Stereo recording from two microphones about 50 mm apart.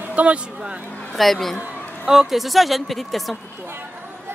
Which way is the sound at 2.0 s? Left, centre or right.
Centre.